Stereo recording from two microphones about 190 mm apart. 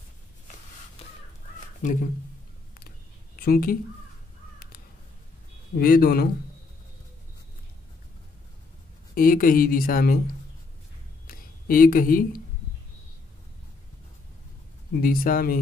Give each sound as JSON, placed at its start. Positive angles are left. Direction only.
{"t": 1.8, "sound": "a woman's voice", "side_deg": 40}
{"t": 3.3, "sound": "a woman's voice", "side_deg": 50}
{"t": 5.8, "sound": "a woman's voice", "side_deg": 50}
{"t": 9.1, "sound": "a woman's voice", "side_deg": 45}
{"t": 11.2, "sound": "speech", "side_deg": 45}
{"t": 15.0, "sound": "a woman's voice", "side_deg": 50}